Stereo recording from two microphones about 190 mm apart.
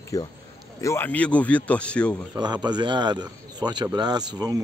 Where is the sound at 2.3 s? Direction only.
20° right (ahead or behind).